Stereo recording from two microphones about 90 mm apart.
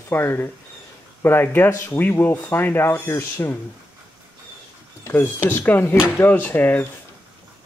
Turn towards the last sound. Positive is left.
turn(degrees=20)  # may be behind; listen again after turning